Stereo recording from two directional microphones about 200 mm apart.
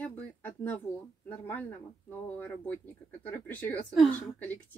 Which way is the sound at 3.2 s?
10° left (ahead or behind).